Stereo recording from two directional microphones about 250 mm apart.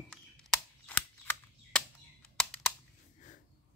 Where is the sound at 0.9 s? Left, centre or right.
Centre.